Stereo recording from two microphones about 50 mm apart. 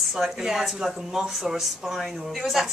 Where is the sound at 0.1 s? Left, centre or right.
Centre.